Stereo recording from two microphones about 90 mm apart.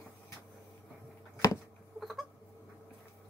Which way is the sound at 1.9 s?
Centre (ahead or behind).